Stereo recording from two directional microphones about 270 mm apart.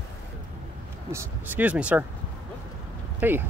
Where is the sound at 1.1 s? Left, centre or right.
Centre.